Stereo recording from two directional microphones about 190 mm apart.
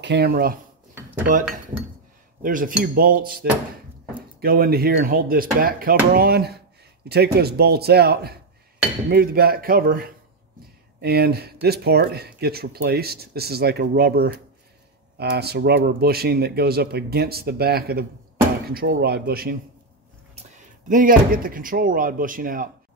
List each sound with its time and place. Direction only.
0.0 s speech: 60° right (ahead or behind)
2.4 s speech: 45° right (ahead or behind)
20.9 s speech: 45° right (ahead or behind)